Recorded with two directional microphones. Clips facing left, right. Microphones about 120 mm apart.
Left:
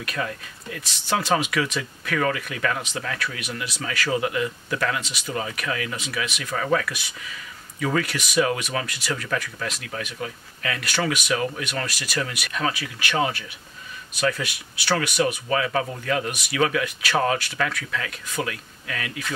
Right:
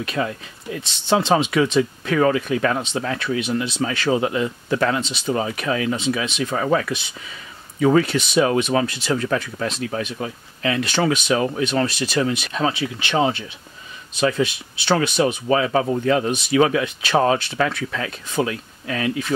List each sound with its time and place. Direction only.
0.0 s speech: 25° right (ahead or behind)